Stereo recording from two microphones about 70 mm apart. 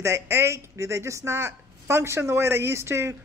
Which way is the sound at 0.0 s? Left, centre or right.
Right.